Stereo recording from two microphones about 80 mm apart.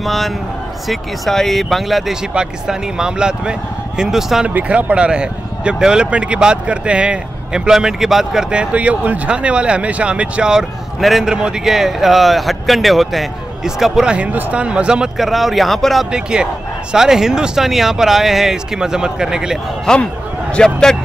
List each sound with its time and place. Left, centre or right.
0.0 s speech: centre
4.6 s speech: centre
16.1 s speech: centre
19.9 s speech: centre